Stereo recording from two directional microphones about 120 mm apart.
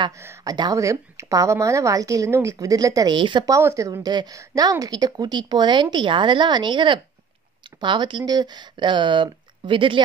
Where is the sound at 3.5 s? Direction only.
25° right (ahead or behind).